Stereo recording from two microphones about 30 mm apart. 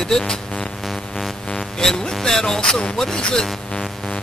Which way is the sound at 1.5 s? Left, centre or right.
Left.